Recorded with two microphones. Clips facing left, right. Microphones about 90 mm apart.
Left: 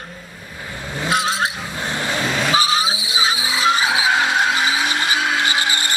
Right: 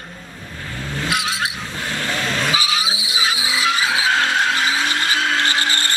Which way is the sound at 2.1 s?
15° left (ahead or behind).